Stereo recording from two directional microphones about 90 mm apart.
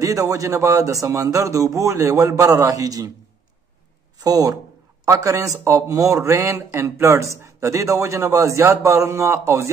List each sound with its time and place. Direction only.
0.0 s speech: 40° right (ahead or behind)
4.2 s speech: 45° right (ahead or behind)